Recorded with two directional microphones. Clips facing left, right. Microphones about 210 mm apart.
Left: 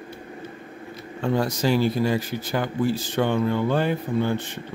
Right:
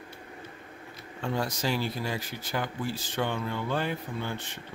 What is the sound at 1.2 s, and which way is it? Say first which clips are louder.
Speech: left 8 dB; 55° left (ahead or behind).